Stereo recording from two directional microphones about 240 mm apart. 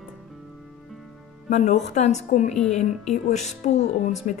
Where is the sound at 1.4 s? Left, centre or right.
Left.